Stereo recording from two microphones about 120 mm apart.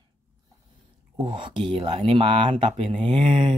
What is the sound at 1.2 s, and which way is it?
Speech, 45° right (ahead or behind).